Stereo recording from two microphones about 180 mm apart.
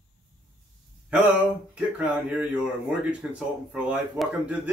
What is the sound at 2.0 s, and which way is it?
Speech, 5° right (ahead or behind).